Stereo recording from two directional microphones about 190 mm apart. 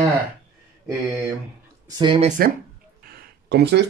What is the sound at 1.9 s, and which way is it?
Speech, 25° right (ahead or behind).